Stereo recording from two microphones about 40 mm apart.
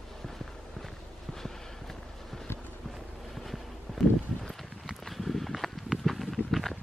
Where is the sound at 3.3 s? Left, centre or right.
Centre.